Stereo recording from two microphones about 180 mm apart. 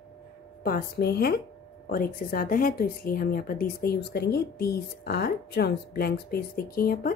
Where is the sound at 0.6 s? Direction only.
60° left (ahead or behind).